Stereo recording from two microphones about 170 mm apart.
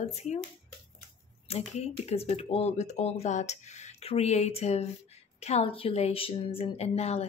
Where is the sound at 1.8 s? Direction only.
40° left (ahead or behind).